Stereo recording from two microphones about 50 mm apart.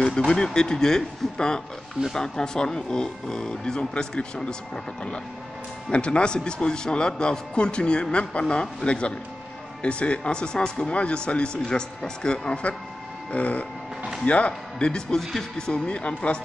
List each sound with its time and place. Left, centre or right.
0.3 s speech: centre
5.9 s a man's voice: left